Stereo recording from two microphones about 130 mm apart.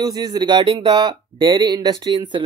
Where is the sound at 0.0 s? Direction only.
30° right (ahead or behind).